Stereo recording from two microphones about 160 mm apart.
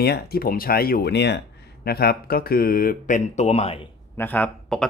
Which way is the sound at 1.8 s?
75° left (ahead or behind).